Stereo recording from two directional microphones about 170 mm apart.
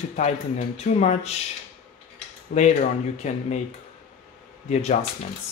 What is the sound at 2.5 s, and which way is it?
Speech, 60° left (ahead or behind).